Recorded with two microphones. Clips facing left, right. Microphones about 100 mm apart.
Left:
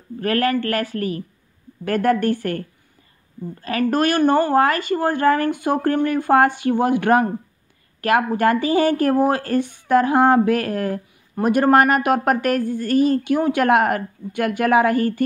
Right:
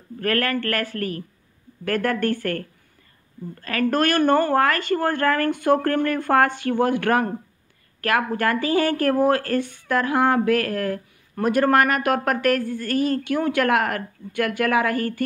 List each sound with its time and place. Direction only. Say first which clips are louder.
0.2 s speech: left 3 dB; 20° left (ahead or behind)
3.6 s speech: left 2 dB; 20° left (ahead or behind)